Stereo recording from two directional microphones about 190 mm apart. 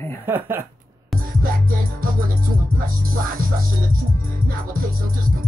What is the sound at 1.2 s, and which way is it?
Music, 45° right (ahead or behind).